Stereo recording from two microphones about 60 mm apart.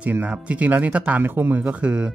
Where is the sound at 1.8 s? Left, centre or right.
Centre.